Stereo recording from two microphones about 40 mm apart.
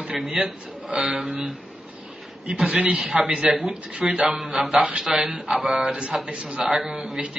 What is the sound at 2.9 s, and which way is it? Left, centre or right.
A man's voice, right.